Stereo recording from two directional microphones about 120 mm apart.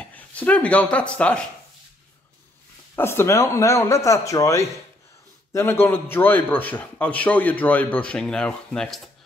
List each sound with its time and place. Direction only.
0.0 s speech: 10° left (ahead or behind)
3.0 s a man's voice: 20° left (ahead or behind); by 9.1 s 5° left (ahead or behind)